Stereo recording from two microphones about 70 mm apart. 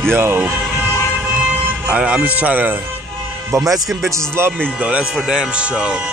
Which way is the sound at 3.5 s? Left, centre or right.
Right.